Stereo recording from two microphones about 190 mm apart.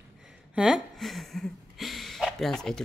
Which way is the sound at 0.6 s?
5° right (ahead or behind).